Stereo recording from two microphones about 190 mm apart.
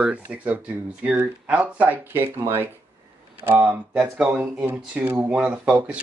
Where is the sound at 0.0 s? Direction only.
5° right (ahead or behind).